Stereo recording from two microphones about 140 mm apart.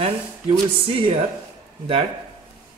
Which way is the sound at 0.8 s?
40° right (ahead or behind).